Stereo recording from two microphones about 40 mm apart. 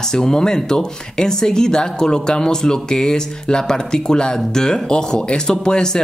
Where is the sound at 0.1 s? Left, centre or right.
Centre.